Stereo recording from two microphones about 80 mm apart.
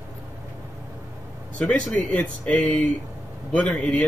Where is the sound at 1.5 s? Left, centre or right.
Centre.